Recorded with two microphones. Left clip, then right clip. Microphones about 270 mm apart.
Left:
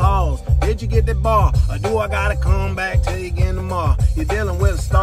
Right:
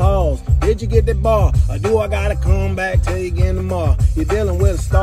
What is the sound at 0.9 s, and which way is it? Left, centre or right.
Speech, centre.